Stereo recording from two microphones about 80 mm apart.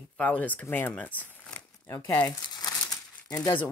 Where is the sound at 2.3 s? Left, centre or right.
Left.